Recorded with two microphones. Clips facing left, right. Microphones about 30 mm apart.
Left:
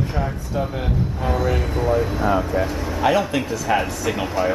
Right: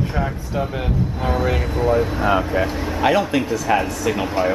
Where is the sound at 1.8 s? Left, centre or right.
Centre.